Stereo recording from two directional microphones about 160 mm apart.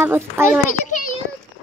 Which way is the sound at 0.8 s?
55° left (ahead or behind).